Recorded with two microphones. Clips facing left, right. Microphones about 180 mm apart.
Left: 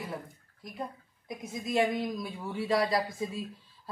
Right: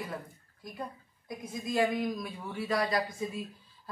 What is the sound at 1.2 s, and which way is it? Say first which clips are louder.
Speech: left 1 dB; 25° left (ahead or behind).